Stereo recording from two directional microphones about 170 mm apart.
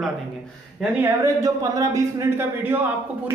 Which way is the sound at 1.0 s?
20° right (ahead or behind).